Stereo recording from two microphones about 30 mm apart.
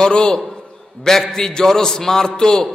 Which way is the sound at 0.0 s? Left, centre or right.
Left.